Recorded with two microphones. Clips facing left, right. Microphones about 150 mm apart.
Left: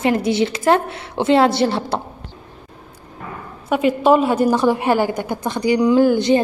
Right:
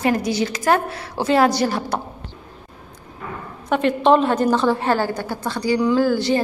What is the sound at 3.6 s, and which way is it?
A woman's voice, 10° left (ahead or behind).